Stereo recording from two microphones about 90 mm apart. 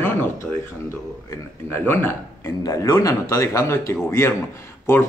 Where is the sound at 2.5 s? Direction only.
40° left (ahead or behind).